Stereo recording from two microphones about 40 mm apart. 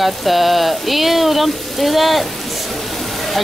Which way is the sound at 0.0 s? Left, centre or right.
Centre.